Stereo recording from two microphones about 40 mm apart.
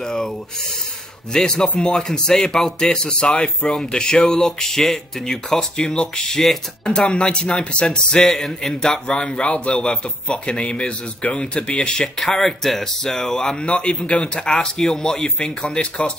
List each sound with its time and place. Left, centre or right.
0.0 s speech: centre
1.3 s speech: centre
6.9 s speech: left
8.3 s speech: centre
8.9 s speech: left
12.0 s speech: centre
15.4 s speech: left